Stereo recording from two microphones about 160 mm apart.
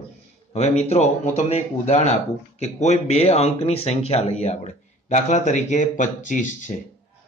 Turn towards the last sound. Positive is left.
turn(degrees=50)  # may be behind; listen again after turning